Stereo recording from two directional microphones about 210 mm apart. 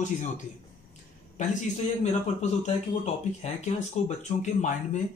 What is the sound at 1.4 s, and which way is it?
A woman's voice, 35° left (ahead or behind).